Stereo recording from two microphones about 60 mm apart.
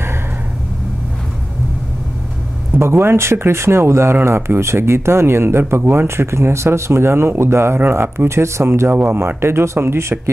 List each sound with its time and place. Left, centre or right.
2.7 s speech: right